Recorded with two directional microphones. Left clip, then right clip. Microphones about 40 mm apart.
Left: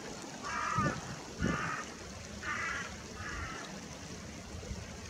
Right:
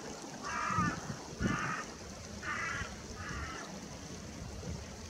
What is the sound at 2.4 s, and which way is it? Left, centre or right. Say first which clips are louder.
Crow: left 1 dB; centre.